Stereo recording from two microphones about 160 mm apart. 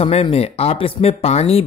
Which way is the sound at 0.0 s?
40° left (ahead or behind).